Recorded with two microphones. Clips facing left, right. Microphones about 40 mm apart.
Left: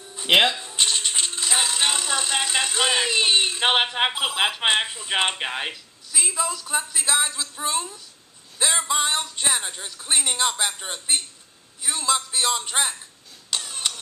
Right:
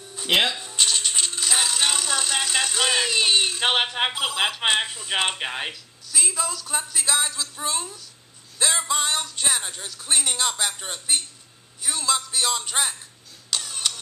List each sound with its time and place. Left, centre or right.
0.1 s speech: centre
8.5 s music: centre
13.5 s camera: centre